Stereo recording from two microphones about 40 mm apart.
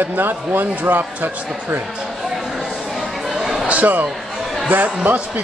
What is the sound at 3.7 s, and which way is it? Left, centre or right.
A man's voice, right.